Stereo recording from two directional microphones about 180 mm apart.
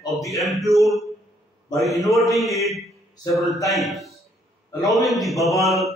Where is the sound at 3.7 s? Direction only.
Centre (ahead or behind).